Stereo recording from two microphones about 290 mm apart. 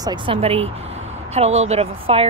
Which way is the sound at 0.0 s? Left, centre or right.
Centre.